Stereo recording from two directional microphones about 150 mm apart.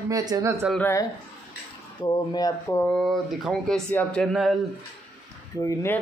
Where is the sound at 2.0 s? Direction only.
25° left (ahead or behind).